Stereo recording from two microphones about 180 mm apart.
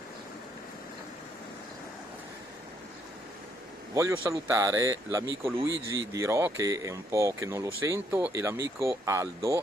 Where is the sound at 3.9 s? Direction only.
15° right (ahead or behind).